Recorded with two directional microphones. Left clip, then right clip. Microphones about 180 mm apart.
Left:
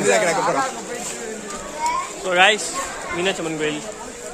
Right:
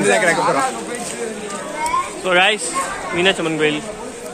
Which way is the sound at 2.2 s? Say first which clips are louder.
Even; 10° right (ahead or behind).